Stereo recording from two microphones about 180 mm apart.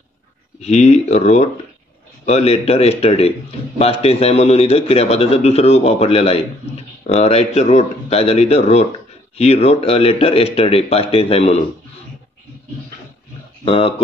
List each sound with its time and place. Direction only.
0.6 s a man's voice: 40° left (ahead or behind)
13.7 s a man's voice: 30° left (ahead or behind)